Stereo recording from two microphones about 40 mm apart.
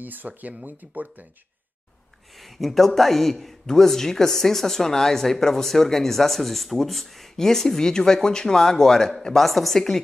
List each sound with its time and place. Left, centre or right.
0.0 s speech: right
2.4 s speech: centre